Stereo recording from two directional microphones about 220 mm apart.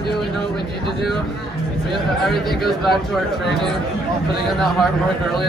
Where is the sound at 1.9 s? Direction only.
Centre (ahead or behind).